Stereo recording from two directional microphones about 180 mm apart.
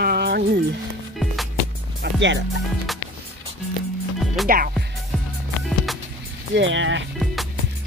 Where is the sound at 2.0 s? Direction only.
85° right.